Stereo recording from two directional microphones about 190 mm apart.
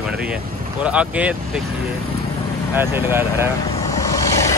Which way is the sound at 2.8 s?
10° right (ahead or behind).